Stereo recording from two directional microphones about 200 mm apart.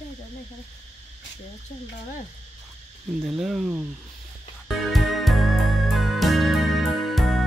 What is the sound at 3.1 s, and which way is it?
Speech, centre (ahead or behind).